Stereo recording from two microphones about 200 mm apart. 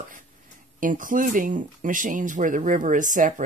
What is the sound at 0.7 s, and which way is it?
Speech, 40° right (ahead or behind).